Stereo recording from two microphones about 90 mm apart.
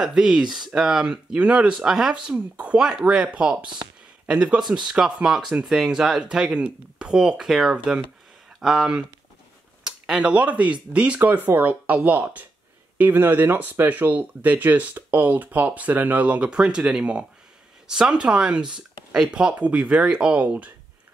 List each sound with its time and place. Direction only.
0.0 s speech: 5° right (ahead or behind)